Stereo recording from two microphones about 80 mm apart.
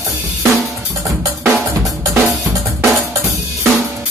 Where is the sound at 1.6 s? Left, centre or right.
Right.